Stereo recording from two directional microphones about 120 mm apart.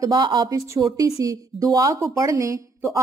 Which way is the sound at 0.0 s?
35° right (ahead or behind).